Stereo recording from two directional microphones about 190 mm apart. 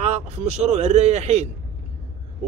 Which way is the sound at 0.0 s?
35° right (ahead or behind).